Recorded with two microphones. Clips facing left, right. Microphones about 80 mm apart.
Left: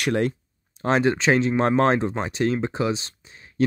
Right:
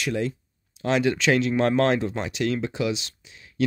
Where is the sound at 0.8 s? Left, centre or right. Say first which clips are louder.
Left 2 dB; left.